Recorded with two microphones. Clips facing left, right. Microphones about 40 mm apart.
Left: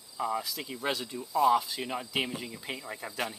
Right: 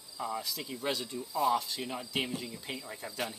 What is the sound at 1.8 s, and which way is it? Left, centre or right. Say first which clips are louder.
Speech: left 3 dB; centre.